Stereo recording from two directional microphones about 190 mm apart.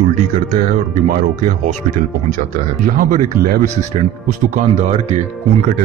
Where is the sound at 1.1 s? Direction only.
45° right (ahead or behind).